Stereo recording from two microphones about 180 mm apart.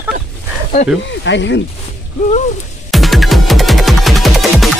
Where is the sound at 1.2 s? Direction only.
80° left.